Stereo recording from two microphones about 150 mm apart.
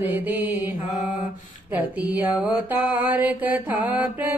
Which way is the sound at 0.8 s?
60° left (ahead or behind).